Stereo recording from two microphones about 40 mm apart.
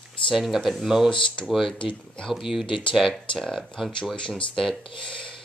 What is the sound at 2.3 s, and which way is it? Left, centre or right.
Speech, centre.